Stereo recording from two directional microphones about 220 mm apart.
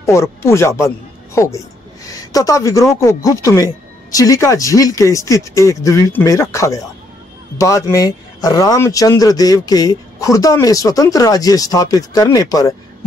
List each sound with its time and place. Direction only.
0.0 s speech: 15° left (ahead or behind)